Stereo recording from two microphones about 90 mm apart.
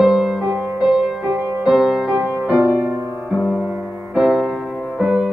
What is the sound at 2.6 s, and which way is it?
Music, 25° right (ahead or behind).